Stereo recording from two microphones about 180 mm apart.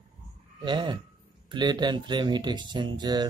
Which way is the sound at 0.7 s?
25° right (ahead or behind).